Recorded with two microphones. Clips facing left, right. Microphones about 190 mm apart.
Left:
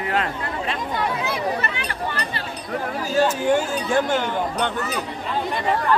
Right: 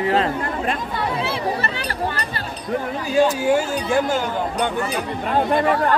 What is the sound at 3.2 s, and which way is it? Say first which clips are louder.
Speech: right 2 dB; 10° right (ahead or behind).